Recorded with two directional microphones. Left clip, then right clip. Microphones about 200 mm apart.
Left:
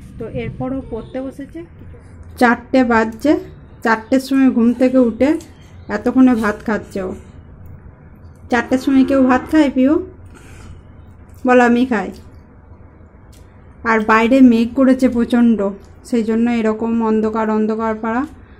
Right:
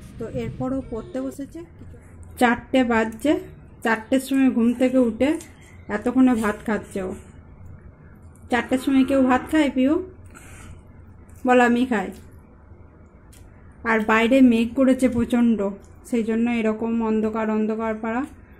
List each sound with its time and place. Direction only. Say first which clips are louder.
0.2 s speech: left 4 dB; 15° right (ahead or behind)
2.3 s a woman's voice: left 6 dB; centre (ahead or behind)
8.5 s a woman's voice: left 6 dB; centre (ahead or behind)
11.4 s a woman's voice: left 5 dB; centre (ahead or behind)
13.8 s a woman's voice: left 6 dB; centre (ahead or behind)